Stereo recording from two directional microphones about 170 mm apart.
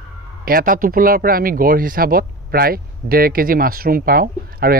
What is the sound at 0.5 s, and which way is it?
Speech, 55° right (ahead or behind).